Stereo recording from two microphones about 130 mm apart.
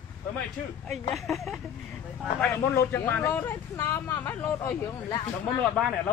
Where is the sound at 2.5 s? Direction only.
20° left (ahead or behind).